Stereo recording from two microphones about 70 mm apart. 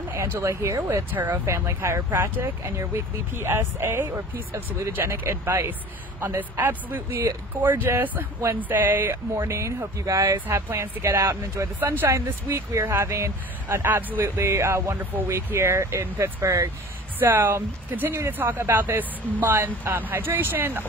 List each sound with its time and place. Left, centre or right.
0.4 s speech: right
1.1 s speech: right
1.4 s speech: right
9.4 s speech: right
10.5 s speech: right
11.8 s speech: right
17.2 s speech: right